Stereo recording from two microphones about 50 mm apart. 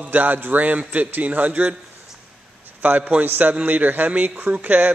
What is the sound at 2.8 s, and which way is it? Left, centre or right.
A man's voice, right.